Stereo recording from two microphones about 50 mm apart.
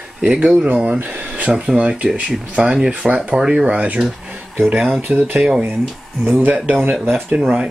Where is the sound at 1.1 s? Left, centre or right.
Right.